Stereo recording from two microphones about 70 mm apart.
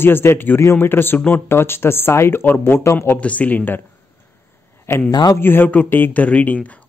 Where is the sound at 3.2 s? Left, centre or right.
Centre.